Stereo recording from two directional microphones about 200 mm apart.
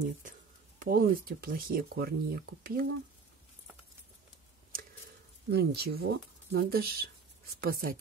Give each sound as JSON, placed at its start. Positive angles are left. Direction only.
{"t": 0.7, "sound": "speech", "side_deg": -45}
{"t": 5.5, "sound": "speech", "side_deg": -50}